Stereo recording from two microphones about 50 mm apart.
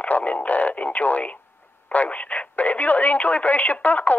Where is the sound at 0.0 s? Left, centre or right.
Left.